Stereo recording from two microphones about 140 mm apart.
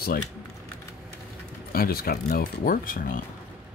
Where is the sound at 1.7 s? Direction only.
90° left.